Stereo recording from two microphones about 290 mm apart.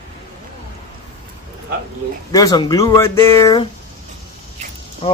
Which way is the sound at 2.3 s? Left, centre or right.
Centre.